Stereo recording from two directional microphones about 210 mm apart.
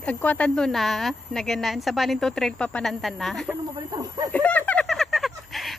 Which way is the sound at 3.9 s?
20° right (ahead or behind).